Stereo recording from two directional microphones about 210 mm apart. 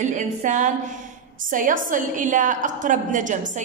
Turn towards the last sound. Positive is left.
turn(degrees=-35)  # may be behind; listen again after turning